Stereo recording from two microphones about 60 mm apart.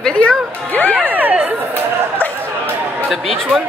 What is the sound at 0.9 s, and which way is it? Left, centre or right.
Speech, right.